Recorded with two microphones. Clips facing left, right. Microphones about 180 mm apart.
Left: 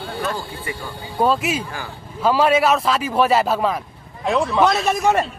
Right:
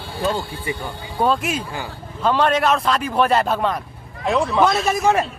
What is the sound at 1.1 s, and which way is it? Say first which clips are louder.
Speech: left 1 dB; 5° left (ahead or behind).